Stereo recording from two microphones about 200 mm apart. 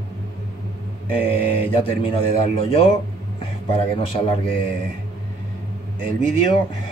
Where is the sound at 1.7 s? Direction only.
25° left (ahead or behind).